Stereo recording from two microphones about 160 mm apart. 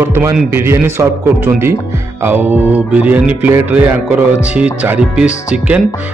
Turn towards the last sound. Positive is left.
turn(degrees=-5)  # may be behind; listen again after turning